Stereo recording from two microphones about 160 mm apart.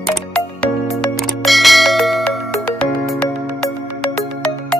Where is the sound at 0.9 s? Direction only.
Centre (ahead or behind).